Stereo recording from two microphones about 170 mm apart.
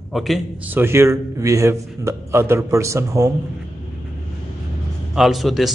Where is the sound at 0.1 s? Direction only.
Centre (ahead or behind).